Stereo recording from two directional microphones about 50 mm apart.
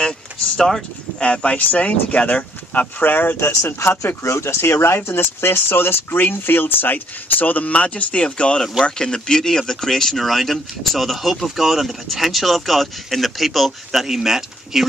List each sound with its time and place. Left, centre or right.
0.6 s speech: centre
1.2 s speech: left
4.0 s speech: left; by 14.9 s centre